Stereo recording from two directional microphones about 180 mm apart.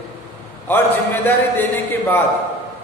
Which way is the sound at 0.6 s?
10° left (ahead or behind).